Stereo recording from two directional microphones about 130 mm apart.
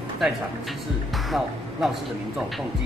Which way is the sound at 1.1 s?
Centre (ahead or behind).